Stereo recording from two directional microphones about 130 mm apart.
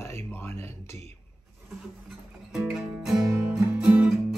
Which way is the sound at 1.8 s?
5° right (ahead or behind).